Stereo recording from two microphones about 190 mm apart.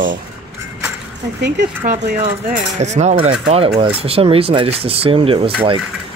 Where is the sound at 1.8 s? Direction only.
45° right (ahead or behind).